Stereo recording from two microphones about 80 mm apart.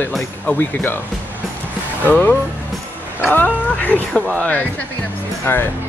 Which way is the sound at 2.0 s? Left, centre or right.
Left.